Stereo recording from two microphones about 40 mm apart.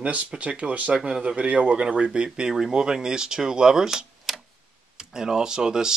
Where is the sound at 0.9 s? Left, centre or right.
Centre.